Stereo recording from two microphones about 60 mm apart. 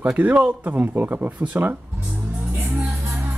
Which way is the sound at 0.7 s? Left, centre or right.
Right.